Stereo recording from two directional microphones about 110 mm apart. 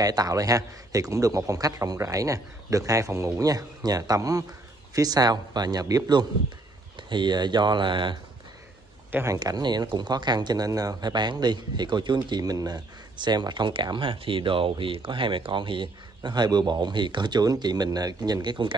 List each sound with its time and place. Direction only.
0.0 s speech: 35° right (ahead or behind)
9.1 s speech: 25° right (ahead or behind)
9.4 s speech: 40° right (ahead or behind)